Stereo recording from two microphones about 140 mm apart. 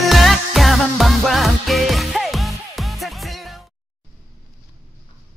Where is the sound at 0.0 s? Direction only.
Centre (ahead or behind).